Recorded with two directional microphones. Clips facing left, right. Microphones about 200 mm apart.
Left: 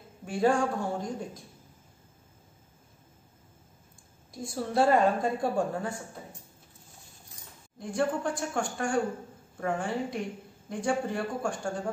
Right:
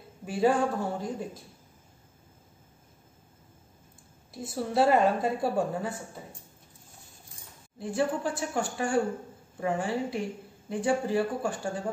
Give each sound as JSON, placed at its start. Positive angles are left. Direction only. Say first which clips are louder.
{"t": 0.2, "sound": "a woman's voice", "louder": "right 1 dB", "side_deg": -5}
{"t": 4.3, "sound": "a woman's voice", "louder": "right 1 dB", "side_deg": -5}
{"t": 7.8, "sound": "a woman's voice", "louder": "even", "side_deg": -5}